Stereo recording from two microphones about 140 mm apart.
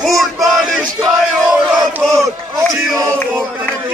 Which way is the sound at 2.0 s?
20° right (ahead or behind).